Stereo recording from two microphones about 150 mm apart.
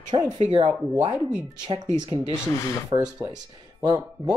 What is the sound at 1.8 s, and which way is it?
Speech, 30° right (ahead or behind).